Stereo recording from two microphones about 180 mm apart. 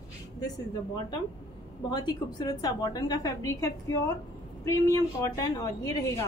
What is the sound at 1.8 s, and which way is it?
A woman's voice, 25° left (ahead or behind).